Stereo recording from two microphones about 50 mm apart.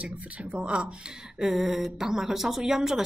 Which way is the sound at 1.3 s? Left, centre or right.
Centre.